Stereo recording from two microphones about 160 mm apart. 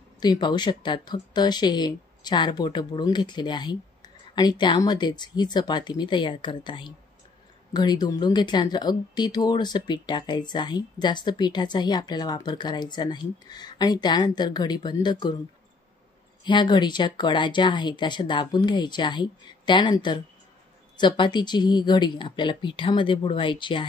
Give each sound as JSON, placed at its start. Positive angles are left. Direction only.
{"t": 0.2, "sound": "speech", "side_deg": 25}
{"t": 16.4, "sound": "speech", "side_deg": 30}